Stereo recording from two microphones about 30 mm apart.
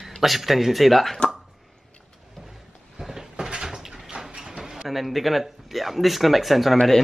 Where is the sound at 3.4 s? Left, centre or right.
Right.